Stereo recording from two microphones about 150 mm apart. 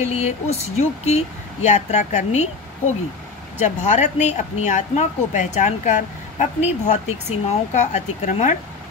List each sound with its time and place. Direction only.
0.0 s speech: 45° left (ahead or behind)
3.5 s speech: 50° left (ahead or behind)